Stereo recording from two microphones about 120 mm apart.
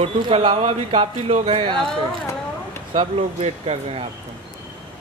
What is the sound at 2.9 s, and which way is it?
Speech, 65° right (ahead or behind).